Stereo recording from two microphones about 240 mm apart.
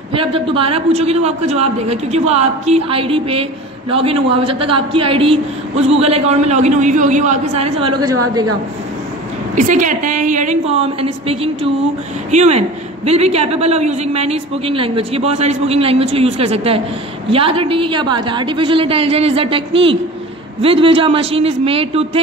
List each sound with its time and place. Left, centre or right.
0.1 s a man's voice: right
9.6 s a woman's voice: right